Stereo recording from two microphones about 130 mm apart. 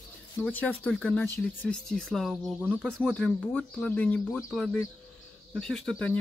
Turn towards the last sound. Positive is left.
turn(degrees=5)  # may be behind; listen again after turning